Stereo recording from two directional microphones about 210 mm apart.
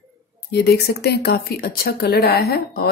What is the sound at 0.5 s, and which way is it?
Speech, 50° left (ahead or behind).